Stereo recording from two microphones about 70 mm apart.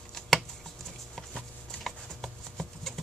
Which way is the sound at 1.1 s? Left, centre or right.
Centre.